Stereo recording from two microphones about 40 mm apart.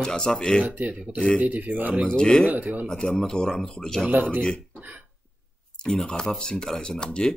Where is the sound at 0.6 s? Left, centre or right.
Right.